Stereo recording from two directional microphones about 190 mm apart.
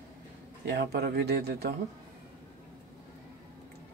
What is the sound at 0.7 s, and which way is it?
Speech, 60° right (ahead or behind).